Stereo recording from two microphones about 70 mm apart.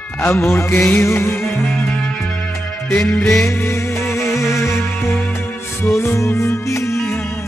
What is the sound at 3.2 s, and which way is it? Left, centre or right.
Music, centre.